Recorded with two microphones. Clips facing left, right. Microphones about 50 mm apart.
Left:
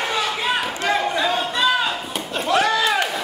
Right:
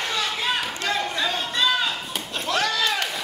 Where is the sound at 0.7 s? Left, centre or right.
Left.